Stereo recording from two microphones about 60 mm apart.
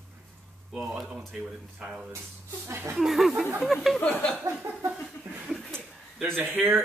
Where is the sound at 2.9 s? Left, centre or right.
Centre.